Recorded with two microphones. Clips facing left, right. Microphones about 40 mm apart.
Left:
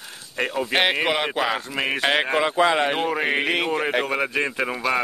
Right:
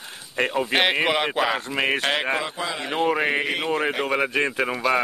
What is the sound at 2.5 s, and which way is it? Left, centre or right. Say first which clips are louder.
Speech: left 7 dB; left.